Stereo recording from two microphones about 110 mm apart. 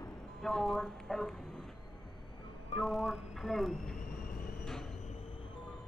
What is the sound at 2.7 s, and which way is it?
Speech, centre (ahead or behind).